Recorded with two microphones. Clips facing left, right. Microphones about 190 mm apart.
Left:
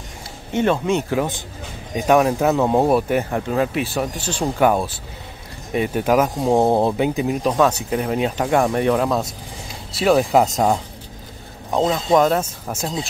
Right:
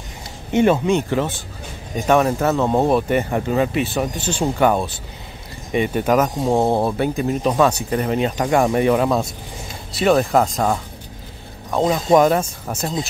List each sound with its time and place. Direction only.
0.5 s speech: 10° right (ahead or behind)
0.8 s speech: centre (ahead or behind)
6.6 s speech: 20° left (ahead or behind)
7.2 s speech: 5° left (ahead or behind)
10.4 s speech: 20° left (ahead or behind)
11.8 s speech: centre (ahead or behind)